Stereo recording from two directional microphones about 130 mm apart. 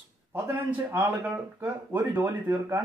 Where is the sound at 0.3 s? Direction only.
20° right (ahead or behind).